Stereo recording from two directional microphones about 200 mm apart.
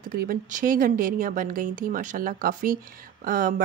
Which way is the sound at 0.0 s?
45° right (ahead or behind).